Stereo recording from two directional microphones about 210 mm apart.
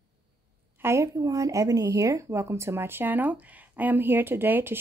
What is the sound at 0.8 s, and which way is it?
Speech, 15° right (ahead or behind).